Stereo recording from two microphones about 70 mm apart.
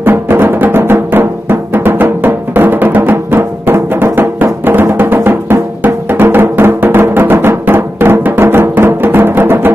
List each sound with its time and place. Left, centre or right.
0.0 s music: right